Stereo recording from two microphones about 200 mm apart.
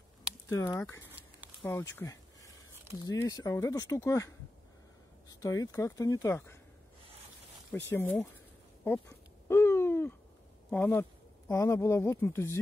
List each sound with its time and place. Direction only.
0.5 s speech: 15° left (ahead or behind)
1.6 s a sound: 10° left (ahead or behind)
3.1 s speech: 20° left (ahead or behind)
5.4 s speech: 15° left (ahead or behind)
7.9 s speech: 10° left (ahead or behind)
9.5 s a sound: 10° left (ahead or behind)
10.7 s speech: 10° left (ahead or behind)